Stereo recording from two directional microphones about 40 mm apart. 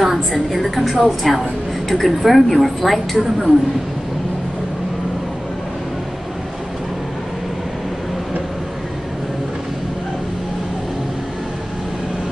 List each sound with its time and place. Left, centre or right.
0.0 s a woman's voice: centre